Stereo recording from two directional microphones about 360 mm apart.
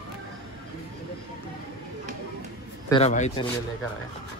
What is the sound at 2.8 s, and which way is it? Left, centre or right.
Speech, centre.